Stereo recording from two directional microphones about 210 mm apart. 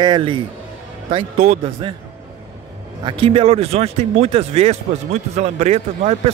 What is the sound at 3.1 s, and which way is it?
Speech, 25° right (ahead or behind).